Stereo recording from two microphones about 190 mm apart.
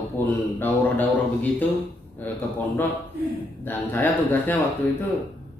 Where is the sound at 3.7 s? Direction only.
10° left (ahead or behind).